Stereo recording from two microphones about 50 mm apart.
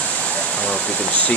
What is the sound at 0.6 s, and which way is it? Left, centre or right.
Speech, left.